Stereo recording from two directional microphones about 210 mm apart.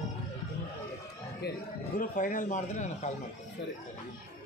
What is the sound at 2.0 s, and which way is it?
Speech, 40° left (ahead or behind).